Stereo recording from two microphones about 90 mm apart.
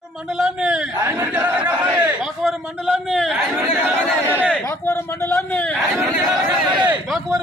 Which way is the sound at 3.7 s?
20° right (ahead or behind).